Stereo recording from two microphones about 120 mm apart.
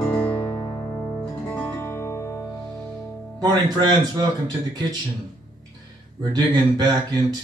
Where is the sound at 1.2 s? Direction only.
15° left (ahead or behind).